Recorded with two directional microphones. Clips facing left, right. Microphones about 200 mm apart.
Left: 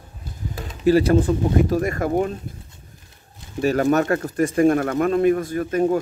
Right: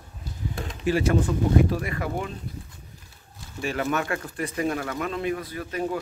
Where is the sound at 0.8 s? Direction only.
35° left (ahead or behind).